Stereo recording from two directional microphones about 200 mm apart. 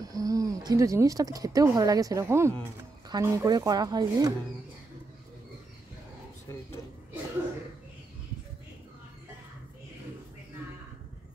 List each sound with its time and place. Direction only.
0.0 s speech: 15° right (ahead or behind)
6.5 s speech: 15° left (ahead or behind)